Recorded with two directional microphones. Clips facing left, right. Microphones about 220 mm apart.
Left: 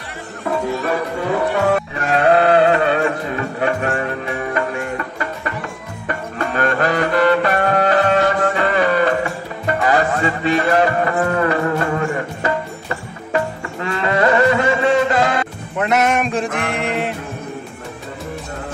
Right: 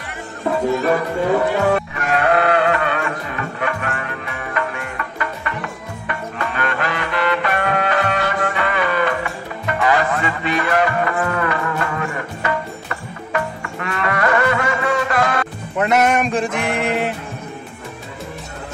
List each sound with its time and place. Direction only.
2.0 s music: 30° left (ahead or behind)
15.8 s male singing: centre (ahead or behind)